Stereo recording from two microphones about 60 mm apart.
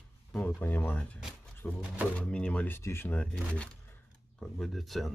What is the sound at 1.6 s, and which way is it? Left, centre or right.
Speech, left.